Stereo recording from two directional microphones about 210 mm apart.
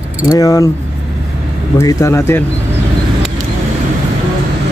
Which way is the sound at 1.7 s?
15° left (ahead or behind).